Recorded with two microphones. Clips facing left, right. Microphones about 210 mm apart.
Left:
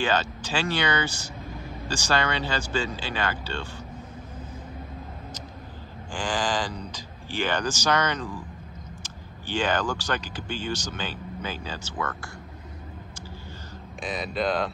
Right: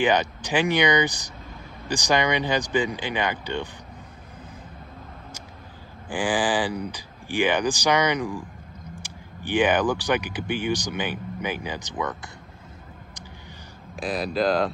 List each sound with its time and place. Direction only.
0.0 s speech: 15° right (ahead or behind)
6.1 s speech: 15° right (ahead or behind)
13.9 s speech: centre (ahead or behind)